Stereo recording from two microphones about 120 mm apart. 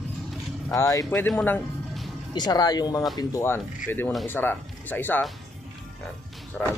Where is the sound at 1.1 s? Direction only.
10° left (ahead or behind).